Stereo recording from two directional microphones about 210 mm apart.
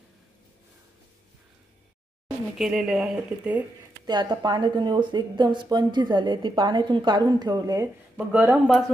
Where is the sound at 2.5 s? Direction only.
Centre (ahead or behind).